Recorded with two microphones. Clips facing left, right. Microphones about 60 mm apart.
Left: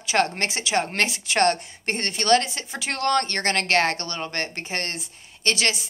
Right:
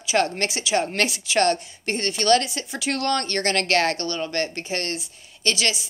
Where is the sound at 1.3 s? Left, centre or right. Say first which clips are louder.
Even; left.